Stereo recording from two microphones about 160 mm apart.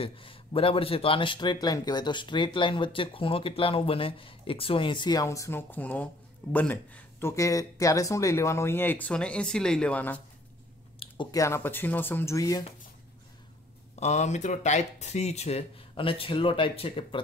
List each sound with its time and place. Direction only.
0.0 s a man's voice: 35° left (ahead or behind); by 10.2 s 10° left (ahead or behind)
11.0 s a sound: 35° left (ahead or behind)
11.3 s speech: 15° left (ahead or behind)
13.9 s speech: 45° left (ahead or behind)